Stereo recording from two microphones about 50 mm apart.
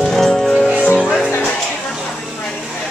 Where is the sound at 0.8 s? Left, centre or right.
Left.